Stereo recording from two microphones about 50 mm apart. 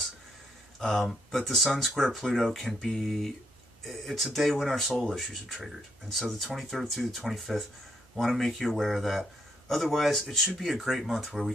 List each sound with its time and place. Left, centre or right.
0.7 s a man's voice: centre